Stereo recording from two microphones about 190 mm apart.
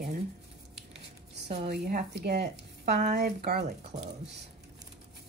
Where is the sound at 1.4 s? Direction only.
60° right (ahead or behind).